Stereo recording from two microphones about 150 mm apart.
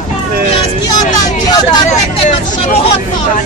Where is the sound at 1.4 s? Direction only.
30° left (ahead or behind).